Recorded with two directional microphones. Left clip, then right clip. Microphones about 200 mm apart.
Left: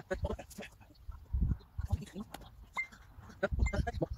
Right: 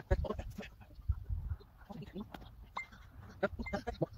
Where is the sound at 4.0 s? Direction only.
10° right (ahead or behind).